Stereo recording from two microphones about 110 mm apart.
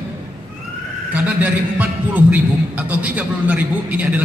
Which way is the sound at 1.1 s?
15° right (ahead or behind).